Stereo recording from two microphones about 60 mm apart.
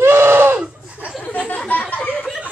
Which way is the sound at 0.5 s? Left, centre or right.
Right.